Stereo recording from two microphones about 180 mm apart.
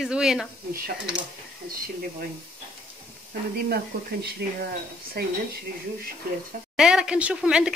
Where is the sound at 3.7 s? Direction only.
65° right (ahead or behind).